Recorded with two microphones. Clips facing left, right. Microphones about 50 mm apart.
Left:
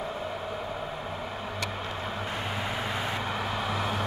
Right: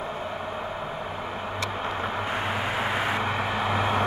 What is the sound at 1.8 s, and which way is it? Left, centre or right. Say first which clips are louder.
Vehicle: right 5 dB; right.